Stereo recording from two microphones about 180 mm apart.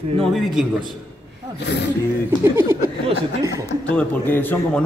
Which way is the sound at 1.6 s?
70° left (ahead or behind).